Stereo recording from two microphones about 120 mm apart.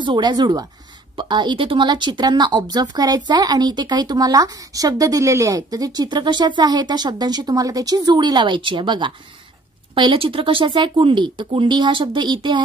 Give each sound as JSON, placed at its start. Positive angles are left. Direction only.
{"t": 0.0, "sound": "a woman's voice", "side_deg": -40}